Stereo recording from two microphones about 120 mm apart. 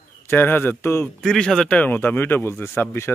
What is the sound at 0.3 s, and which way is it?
Speech, 15° left (ahead or behind).